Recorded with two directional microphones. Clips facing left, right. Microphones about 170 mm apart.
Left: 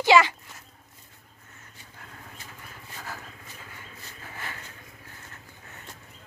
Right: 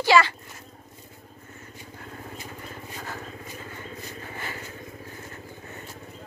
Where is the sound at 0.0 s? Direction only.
20° left (ahead or behind).